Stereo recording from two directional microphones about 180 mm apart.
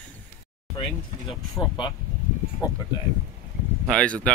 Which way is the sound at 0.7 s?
30° left (ahead or behind).